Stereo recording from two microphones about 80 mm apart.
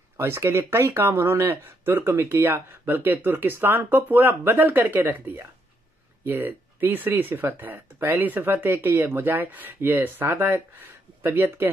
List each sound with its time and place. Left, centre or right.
0.2 s speech: right